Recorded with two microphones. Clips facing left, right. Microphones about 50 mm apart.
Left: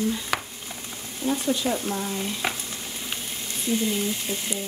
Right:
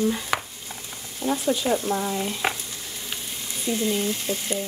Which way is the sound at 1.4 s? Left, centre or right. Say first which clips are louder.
Right 2 dB; centre.